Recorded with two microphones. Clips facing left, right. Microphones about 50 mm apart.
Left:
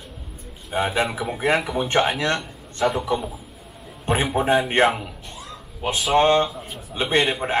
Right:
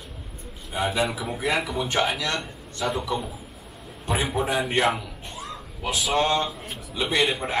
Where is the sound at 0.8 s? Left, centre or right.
Left.